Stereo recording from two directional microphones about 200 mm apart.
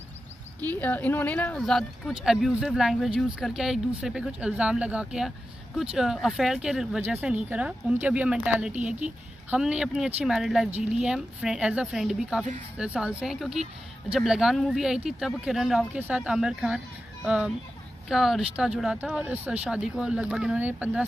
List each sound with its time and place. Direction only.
0.6 s speech: 10° left (ahead or behind); by 21.0 s 10° right (ahead or behind)